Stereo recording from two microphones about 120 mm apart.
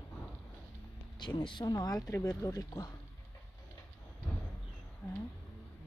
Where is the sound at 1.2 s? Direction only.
40° left (ahead or behind).